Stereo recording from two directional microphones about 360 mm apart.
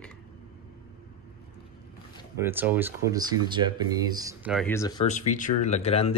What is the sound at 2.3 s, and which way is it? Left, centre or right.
Speech, centre.